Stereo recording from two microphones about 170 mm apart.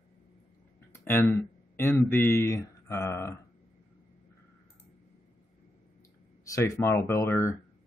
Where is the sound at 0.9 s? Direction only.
15° left (ahead or behind).